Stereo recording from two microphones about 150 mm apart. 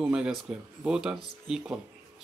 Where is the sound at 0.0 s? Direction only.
5° right (ahead or behind).